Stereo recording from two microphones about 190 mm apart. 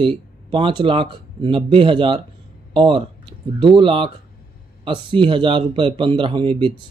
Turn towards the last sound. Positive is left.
turn(degrees=-25)  # may be behind; listen again after turning